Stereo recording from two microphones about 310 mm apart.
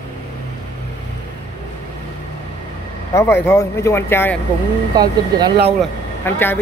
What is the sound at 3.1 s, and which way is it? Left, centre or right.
Speech, centre.